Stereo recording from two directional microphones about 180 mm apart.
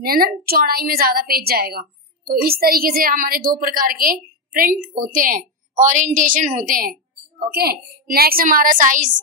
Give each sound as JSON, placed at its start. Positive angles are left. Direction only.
{"t": 0.0, "sound": "a woman's voice", "side_deg": -55}